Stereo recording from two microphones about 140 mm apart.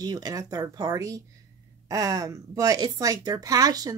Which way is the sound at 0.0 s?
25° right (ahead or behind).